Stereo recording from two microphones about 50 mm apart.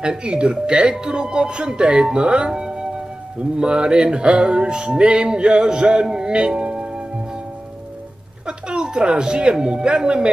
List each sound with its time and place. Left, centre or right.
0.0 s speech: centre
0.9 s music: centre
8.5 s speech: centre